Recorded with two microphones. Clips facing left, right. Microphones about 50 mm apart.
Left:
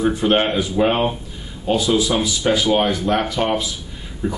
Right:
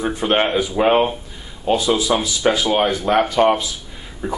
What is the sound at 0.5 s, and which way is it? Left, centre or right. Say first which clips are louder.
A man's voice: right 2 dB; right.